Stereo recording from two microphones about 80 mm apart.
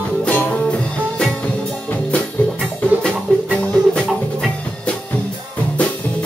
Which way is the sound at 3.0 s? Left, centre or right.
Centre.